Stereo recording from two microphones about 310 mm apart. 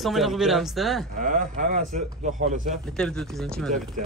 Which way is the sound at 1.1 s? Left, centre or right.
Right.